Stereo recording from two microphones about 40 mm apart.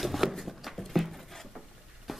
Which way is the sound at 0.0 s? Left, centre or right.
Centre.